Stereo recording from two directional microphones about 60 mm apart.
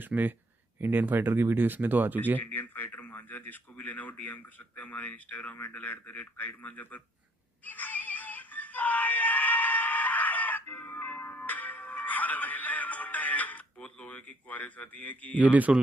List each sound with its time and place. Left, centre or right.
0.0 s speech: right
2.4 s speech: left
7.6 s synthetic singing: left